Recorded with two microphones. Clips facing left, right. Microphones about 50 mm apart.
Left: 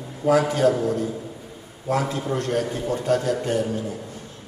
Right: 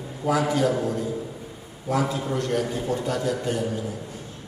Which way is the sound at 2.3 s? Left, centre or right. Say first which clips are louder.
Left 1 dB; left.